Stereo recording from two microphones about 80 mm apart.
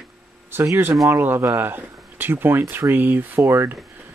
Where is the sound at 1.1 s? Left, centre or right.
Right.